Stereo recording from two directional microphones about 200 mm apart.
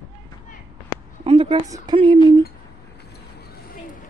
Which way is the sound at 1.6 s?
20° right (ahead or behind).